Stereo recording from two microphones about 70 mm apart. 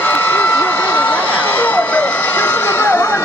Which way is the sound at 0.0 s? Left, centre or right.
Left.